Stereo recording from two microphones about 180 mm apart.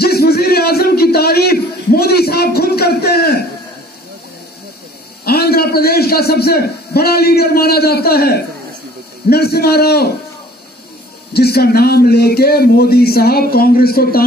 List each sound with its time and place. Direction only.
0.0 s music: 60° left (ahead or behind)
5.2 s a man's voice: 60° left (ahead or behind)
11.3 s speech: 60° left (ahead or behind)